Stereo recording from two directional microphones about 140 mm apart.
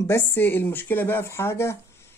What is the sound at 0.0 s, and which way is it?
A woman's voice, 15° left (ahead or behind).